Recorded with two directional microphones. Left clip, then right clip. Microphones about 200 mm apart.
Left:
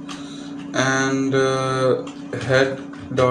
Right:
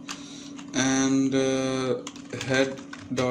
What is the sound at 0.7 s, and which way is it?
Speech, 35° right (ahead or behind).